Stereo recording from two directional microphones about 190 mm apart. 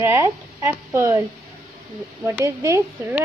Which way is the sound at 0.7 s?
15° right (ahead or behind).